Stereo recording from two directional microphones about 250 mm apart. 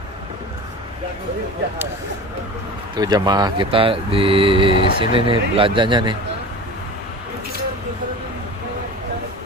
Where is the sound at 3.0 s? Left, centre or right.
Centre.